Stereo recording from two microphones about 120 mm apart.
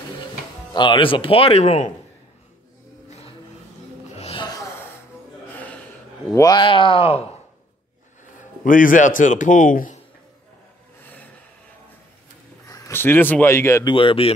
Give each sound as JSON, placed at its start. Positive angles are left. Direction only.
{"t": 0.7, "sound": "speech", "side_deg": 45}
{"t": 3.1, "sound": "music", "side_deg": 60}
{"t": 4.4, "sound": "a sound", "side_deg": 35}
{"t": 6.3, "sound": "speech", "side_deg": 35}
{"t": 8.6, "sound": "speech", "side_deg": 90}
{"t": 12.6, "sound": "a sound", "side_deg": 30}
{"t": 13.0, "sound": "speech", "side_deg": 15}
{"t": 13.8, "sound": "speech", "side_deg": 50}